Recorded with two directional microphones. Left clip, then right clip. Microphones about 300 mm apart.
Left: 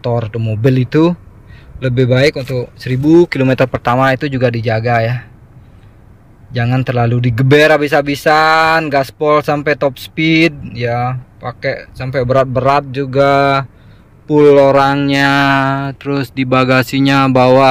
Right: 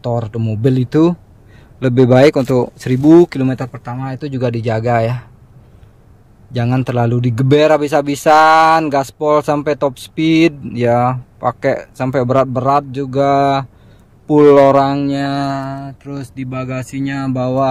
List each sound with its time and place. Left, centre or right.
0.0 s speech: centre
3.4 s speech: centre
4.2 s speech: centre
6.5 s speech: centre
15.1 s speech: centre